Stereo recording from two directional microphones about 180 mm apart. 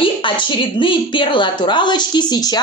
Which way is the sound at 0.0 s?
25° left (ahead or behind).